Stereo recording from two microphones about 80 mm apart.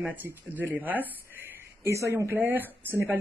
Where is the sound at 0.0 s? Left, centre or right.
Right.